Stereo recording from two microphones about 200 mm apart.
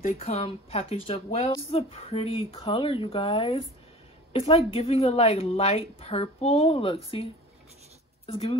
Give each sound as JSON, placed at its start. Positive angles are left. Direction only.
{"t": 0.0, "sound": "a woman's voice", "side_deg": 30}
{"t": 8.3, "sound": "a woman's voice", "side_deg": 30}